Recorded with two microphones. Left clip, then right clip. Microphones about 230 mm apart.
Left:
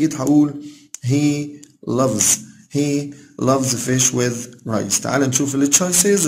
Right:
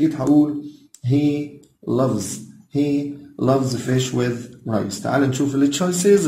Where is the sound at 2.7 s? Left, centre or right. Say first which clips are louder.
Even; left.